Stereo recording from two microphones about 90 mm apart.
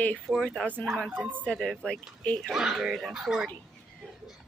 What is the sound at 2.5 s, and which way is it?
Speech, 5° right (ahead or behind).